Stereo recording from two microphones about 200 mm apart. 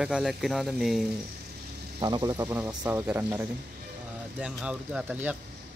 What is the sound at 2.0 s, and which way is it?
Speech, 20° right (ahead or behind).